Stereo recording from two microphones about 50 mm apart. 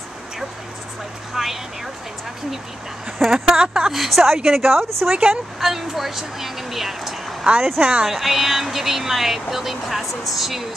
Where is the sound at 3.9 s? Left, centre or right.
Centre.